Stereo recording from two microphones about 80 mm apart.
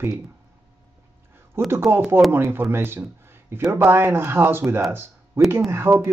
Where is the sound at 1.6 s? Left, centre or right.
Right.